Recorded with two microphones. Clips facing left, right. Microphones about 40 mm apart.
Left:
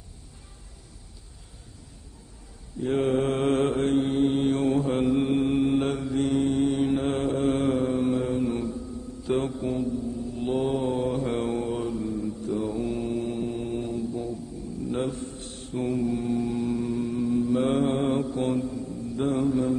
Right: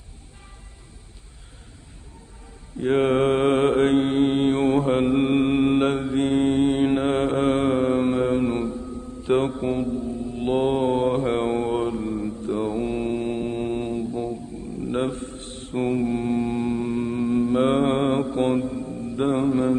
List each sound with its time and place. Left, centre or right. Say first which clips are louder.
2.8 s mantra: right 5 dB; right